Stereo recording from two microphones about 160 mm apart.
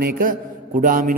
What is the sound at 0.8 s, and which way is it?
Speech, 55° right (ahead or behind).